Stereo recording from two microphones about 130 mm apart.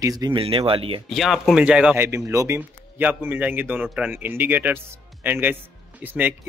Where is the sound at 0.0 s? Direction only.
30° right (ahead or behind).